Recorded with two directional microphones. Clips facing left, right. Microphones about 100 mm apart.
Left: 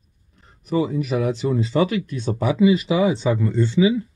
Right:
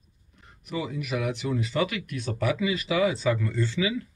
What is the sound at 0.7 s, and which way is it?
Speech, 35° left (ahead or behind).